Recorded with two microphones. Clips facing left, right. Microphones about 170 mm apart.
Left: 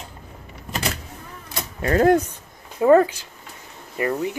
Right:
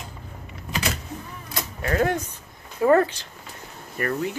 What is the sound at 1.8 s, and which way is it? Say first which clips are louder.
Speech: left 7 dB; 35° left (ahead or behind).